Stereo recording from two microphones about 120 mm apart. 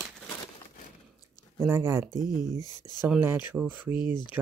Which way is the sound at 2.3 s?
35° left (ahead or behind).